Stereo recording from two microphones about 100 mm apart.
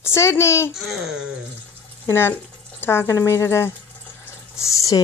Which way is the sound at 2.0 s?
25° left (ahead or behind).